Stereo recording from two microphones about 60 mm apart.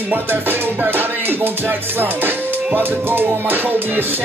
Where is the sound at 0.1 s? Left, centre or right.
Right.